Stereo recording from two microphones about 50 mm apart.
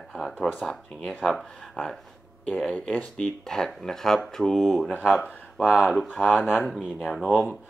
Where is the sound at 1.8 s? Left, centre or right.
Left.